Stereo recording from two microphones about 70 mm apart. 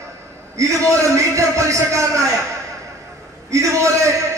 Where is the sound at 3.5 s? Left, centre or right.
Right.